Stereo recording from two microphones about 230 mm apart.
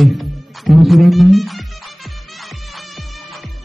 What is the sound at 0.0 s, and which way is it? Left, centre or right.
Music, centre.